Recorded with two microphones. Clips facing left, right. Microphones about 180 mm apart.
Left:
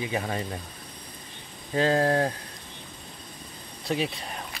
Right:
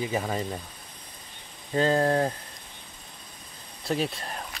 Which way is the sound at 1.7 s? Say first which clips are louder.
Even; 5° left (ahead or behind).